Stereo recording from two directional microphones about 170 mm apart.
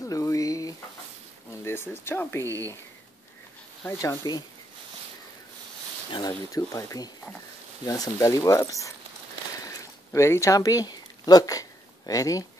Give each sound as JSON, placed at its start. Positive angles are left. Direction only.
{"t": 0.0, "sound": "sizzle", "side_deg": 20}
{"t": 1.6, "sound": "speech", "side_deg": 15}
{"t": 3.8, "sound": "speech", "side_deg": 15}
{"t": 6.1, "sound": "speech", "side_deg": 20}
{"t": 9.6, "sound": "a sound", "side_deg": 20}
{"t": 12.1, "sound": "speech", "side_deg": 20}